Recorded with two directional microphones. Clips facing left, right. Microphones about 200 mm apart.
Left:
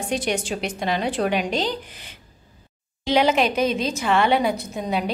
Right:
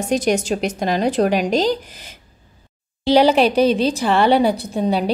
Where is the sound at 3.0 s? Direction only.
35° right (ahead or behind).